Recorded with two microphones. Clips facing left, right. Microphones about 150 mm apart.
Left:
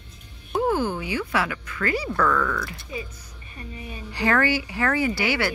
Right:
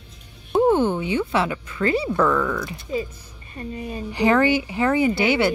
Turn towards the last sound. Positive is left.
turn(degrees=-20)  # may be behind; listen again after turning